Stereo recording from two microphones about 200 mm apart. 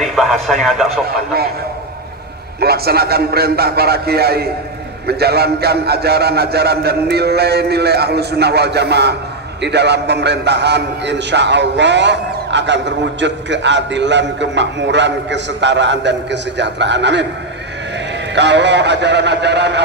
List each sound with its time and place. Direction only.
0.0 s speech: centre (ahead or behind)
2.6 s a man's voice: 50° right (ahead or behind)
18.3 s a man's voice: 60° right (ahead or behind)